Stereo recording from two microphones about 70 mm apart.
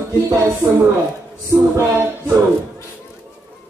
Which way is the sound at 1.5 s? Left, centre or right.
Right.